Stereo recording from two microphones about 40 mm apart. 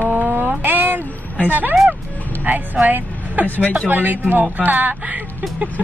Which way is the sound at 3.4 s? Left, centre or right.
Left.